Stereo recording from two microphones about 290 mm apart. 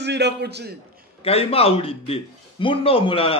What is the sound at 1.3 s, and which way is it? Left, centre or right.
A man's voice, centre.